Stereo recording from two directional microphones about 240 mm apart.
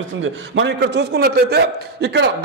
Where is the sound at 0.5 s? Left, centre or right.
Right.